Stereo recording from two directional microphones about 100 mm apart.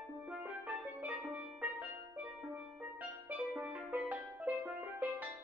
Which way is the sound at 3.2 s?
15° right (ahead or behind).